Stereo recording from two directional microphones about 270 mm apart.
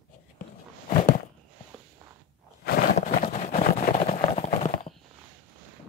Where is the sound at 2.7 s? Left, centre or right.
Left.